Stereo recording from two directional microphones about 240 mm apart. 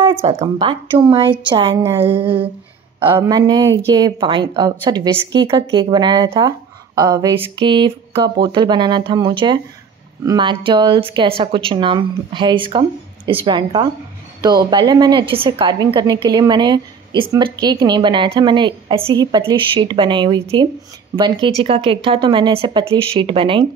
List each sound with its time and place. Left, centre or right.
0.0 s a woman's voice: right
1.8 s a woman's voice: centre
2.1 s a woman's voice: right